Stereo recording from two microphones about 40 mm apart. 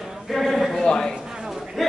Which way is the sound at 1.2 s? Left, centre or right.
Centre.